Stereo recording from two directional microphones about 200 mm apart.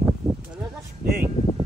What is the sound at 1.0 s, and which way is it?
Speech, 50° right (ahead or behind).